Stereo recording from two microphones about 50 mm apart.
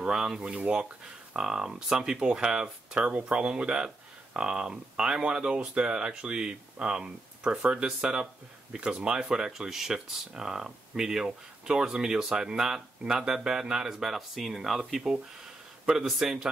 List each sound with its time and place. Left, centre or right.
0.0 s speech: centre